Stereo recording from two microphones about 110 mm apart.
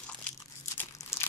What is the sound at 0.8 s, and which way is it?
Crumpling, 25° left (ahead or behind).